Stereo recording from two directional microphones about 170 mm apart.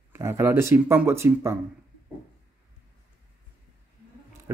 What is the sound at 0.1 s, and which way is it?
Speech, 15° right (ahead or behind).